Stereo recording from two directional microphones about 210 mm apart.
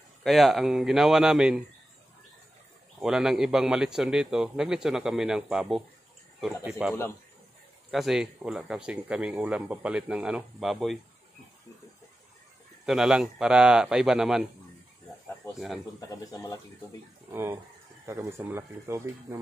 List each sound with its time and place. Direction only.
0.2 s speech: centre (ahead or behind)
3.0 s speech: centre (ahead or behind)
12.8 s speech: centre (ahead or behind)
16.1 s speech: 15° left (ahead or behind)
17.3 s speech: 10° right (ahead or behind)